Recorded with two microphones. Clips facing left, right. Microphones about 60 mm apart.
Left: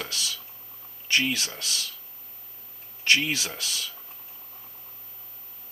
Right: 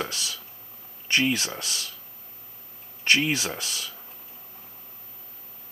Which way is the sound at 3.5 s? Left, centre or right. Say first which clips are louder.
Right 1 dB; centre.